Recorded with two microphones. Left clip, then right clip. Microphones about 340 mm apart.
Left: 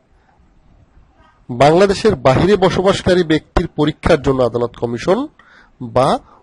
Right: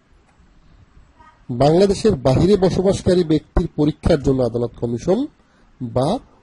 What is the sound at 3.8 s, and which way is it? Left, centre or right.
Speech, left.